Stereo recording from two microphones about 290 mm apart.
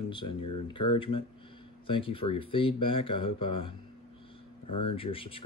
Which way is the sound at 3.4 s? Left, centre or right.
Left.